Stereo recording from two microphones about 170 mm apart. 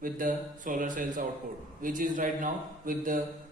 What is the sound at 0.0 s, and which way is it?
A man's voice, 55° right (ahead or behind).